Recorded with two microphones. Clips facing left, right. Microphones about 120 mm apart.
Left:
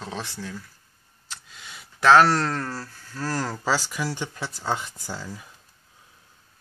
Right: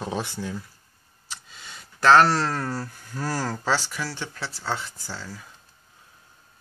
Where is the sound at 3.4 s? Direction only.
5° left (ahead or behind).